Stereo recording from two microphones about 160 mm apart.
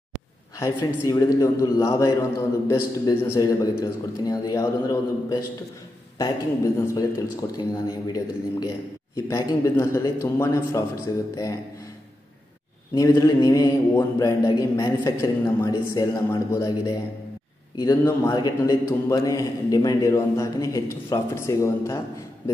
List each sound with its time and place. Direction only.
0.6 s a man's voice: 20° left (ahead or behind)
13.1 s a man's voice: 20° left (ahead or behind)